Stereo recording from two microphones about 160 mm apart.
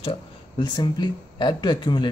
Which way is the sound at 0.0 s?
30° left (ahead or behind).